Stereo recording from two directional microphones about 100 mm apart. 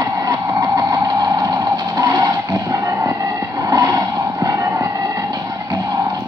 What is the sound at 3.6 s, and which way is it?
Vehicle, 35° right (ahead or behind).